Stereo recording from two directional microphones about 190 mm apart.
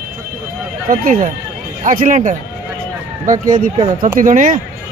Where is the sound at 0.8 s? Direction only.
50° right (ahead or behind).